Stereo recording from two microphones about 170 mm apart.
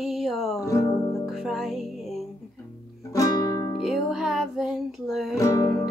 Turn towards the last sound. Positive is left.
turn(degrees=20)  # may be behind; listen again after turning